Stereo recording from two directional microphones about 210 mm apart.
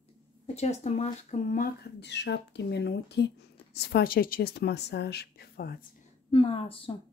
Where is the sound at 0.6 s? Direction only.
30° left (ahead or behind); by 5.9 s 45° left (ahead or behind).